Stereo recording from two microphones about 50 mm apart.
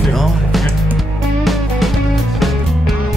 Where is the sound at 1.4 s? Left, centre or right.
Centre.